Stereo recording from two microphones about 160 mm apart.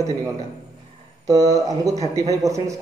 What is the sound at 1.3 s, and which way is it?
A man's voice, 25° right (ahead or behind).